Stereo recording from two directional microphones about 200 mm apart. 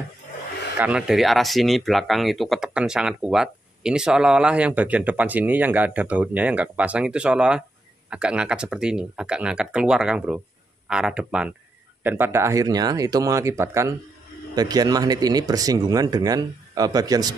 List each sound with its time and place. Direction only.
0.7 s speech: 5° right (ahead or behind)